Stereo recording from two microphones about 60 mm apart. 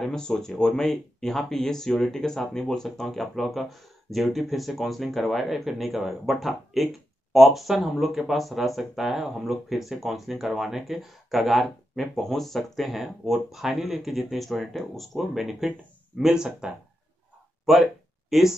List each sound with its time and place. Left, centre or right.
0.0 s speech: centre
18.3 s speech: centre